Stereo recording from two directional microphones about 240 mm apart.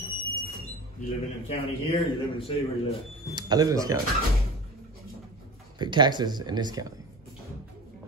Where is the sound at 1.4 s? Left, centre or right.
Left.